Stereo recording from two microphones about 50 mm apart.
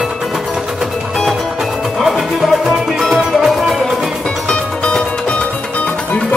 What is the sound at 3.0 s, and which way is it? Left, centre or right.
Music, centre.